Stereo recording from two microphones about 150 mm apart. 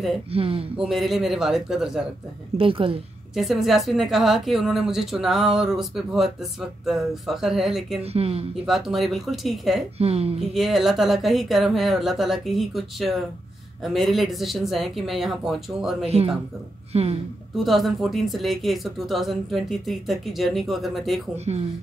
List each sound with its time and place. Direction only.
0.3 s speech: 40° right (ahead or behind)
0.8 s speech: centre (ahead or behind)
2.5 s speech: 35° right (ahead or behind)
3.3 s speech: centre (ahead or behind)
8.0 s speech: 40° right (ahead or behind)
8.6 s speech: centre (ahead or behind)
9.9 s speech: 45° right (ahead or behind)
10.5 s speech: centre (ahead or behind)
16.9 s speech: 40° right (ahead or behind)
17.6 s speech: centre (ahead or behind)
21.5 s speech: 40° right (ahead or behind)